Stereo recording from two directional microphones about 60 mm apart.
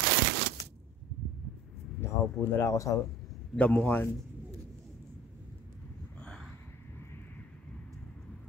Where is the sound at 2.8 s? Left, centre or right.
Left.